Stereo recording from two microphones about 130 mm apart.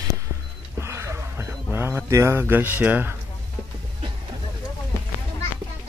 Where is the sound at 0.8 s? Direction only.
20° right (ahead or behind).